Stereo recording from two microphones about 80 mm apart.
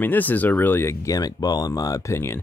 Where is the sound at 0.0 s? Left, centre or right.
Left.